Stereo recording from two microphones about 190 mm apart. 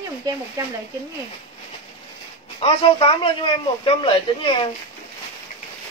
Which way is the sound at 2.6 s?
30° left (ahead or behind).